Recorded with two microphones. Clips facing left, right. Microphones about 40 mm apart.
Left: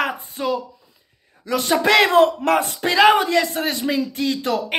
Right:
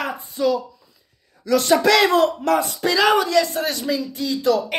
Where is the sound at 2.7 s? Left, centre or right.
Left.